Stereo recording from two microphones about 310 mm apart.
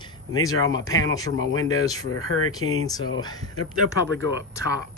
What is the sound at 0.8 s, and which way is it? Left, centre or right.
Speech, centre.